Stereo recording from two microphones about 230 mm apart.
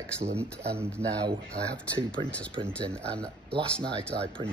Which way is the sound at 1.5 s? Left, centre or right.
Centre.